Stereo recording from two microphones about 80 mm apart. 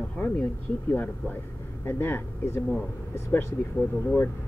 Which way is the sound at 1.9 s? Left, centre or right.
Left.